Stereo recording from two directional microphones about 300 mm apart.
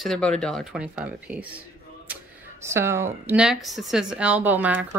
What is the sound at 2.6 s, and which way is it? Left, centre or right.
Speech, centre.